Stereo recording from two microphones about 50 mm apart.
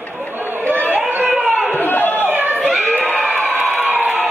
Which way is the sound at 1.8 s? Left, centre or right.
Left.